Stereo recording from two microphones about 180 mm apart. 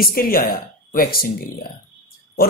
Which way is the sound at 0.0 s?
55° left (ahead or behind).